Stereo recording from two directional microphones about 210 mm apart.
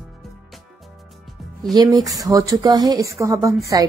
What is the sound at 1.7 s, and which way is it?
Speech, 20° right (ahead or behind).